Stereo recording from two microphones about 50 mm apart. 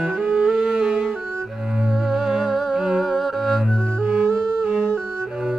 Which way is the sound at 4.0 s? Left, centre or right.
Right.